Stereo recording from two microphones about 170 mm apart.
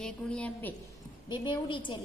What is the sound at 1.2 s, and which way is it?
Speech, 25° left (ahead or behind).